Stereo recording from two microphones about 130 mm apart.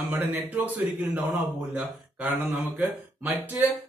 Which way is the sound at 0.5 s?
10° right (ahead or behind).